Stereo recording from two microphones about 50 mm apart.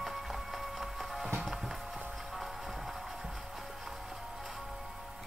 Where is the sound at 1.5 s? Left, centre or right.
Centre.